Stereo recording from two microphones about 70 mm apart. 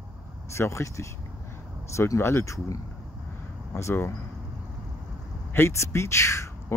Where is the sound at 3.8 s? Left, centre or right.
Left.